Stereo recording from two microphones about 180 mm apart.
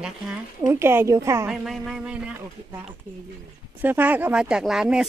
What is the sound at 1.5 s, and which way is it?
Speech, centre (ahead or behind).